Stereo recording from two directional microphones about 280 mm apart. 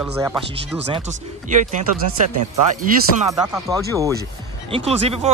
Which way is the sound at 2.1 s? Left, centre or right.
Right.